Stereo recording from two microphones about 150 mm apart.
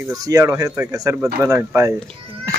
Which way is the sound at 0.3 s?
20° right (ahead or behind).